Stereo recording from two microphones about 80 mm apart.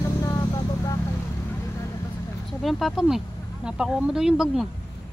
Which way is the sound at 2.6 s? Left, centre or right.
Centre.